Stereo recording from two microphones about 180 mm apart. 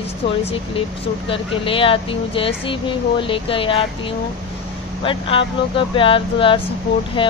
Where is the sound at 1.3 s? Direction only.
30° left (ahead or behind).